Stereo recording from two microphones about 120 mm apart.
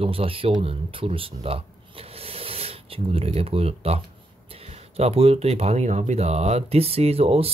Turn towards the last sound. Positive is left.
turn(degrees=-55)  # may be behind; listen again after turning